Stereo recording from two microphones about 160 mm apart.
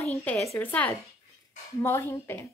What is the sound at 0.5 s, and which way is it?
A woman's voice, 10° left (ahead or behind).